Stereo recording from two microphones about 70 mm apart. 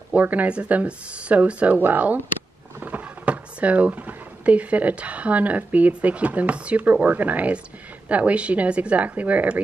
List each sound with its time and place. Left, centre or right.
0.1 s speech: right
2.8 s a sound: right
4.5 s speech: right